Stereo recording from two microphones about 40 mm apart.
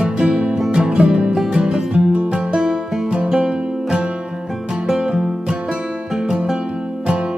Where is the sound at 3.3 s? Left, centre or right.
Centre.